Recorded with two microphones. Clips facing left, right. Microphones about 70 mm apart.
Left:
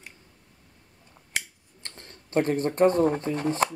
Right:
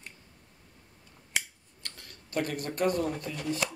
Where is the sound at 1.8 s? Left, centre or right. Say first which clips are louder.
Left 2 dB; left.